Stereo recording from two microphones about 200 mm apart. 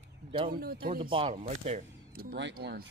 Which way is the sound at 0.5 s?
45° right (ahead or behind).